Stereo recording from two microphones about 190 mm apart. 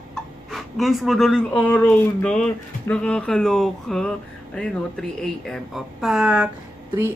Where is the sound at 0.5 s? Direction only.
Centre (ahead or behind).